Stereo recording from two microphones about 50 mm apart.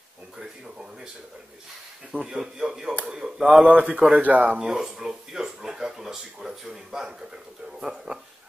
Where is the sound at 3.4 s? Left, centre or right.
Right.